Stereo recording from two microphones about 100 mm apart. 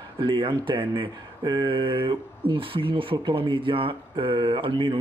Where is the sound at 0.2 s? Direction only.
55° right (ahead or behind).